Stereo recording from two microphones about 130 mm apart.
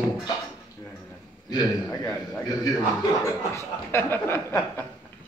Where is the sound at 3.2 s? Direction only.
20° left (ahead or behind).